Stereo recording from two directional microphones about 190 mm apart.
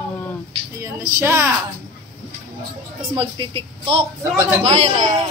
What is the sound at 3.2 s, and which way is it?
Speech, 25° right (ahead or behind).